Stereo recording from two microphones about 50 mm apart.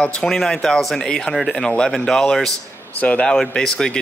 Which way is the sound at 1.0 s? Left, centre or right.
Centre.